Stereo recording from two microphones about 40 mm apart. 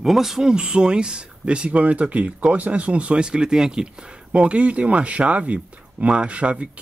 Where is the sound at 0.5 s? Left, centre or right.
Right.